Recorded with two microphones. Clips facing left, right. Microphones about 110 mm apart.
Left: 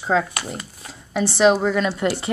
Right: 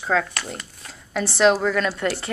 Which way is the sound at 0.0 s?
10° left (ahead or behind).